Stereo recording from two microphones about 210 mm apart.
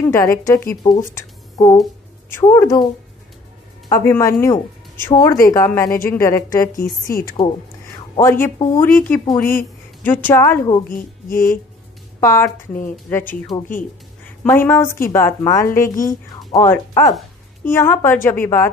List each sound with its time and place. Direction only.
0.1 s a woman's voice: 15° left (ahead or behind)
3.9 s a woman's voice: 15° left (ahead or behind)
6.8 s speech: 40° left (ahead or behind)
8.2 s a woman's voice: 10° left (ahead or behind)
10.9 s speech: 40° left (ahead or behind)
12.2 s a woman's voice: 10° left (ahead or behind)